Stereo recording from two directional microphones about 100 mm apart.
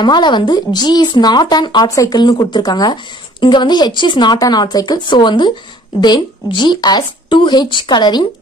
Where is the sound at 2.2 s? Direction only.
45° left (ahead or behind).